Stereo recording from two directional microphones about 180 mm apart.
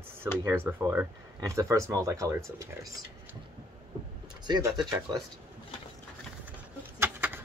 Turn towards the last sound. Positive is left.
turn(degrees=-10)  # may be behind; listen again after turning